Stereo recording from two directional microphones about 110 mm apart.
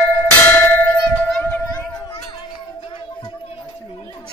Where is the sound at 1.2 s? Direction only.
5° left (ahead or behind).